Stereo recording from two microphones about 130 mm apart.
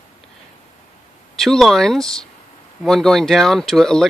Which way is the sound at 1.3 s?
5° left (ahead or behind).